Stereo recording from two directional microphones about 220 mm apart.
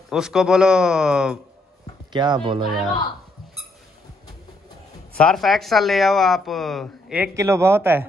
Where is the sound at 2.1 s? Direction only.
20° right (ahead or behind).